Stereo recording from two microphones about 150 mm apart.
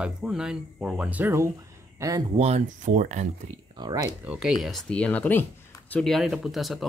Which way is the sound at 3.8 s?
30° right (ahead or behind).